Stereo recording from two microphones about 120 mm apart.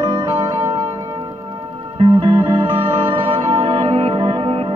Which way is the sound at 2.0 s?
50° right (ahead or behind).